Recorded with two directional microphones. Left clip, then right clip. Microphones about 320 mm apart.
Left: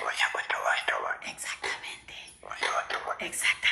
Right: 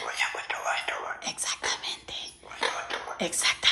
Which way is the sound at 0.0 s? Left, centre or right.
Centre.